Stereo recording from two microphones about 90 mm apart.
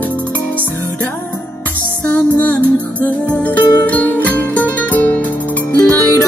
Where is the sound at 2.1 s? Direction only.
15° left (ahead or behind).